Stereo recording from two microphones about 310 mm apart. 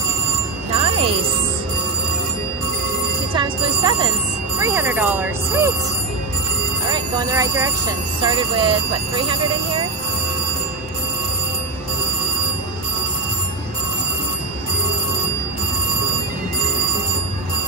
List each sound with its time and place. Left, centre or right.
3.3 s speech: centre
6.9 s speech: centre